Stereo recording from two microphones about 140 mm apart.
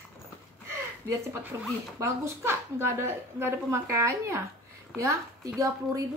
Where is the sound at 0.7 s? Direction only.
20° right (ahead or behind).